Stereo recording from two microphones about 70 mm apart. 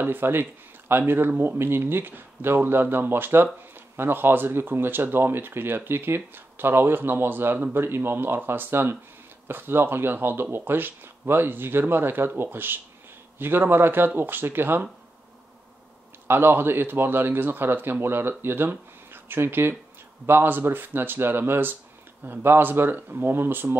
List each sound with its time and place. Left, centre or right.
0.0 s speech: right
16.3 s speech: right